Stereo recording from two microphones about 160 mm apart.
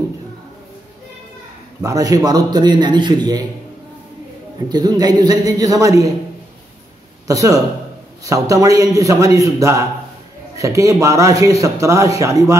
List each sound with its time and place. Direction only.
1.8 s a man's voice: 20° right (ahead or behind)
4.6 s a man's voice: 25° right (ahead or behind)
7.2 s a man's voice: 20° right (ahead or behind)